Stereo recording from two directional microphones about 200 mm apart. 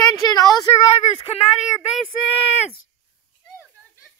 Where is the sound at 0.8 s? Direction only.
30° left (ahead or behind).